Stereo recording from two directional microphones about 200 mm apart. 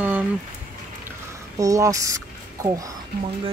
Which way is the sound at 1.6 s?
15° right (ahead or behind).